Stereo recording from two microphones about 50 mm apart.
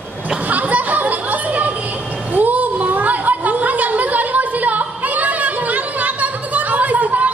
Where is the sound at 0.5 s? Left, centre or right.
Right.